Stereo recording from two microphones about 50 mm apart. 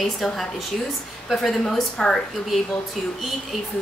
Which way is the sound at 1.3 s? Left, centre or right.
Centre.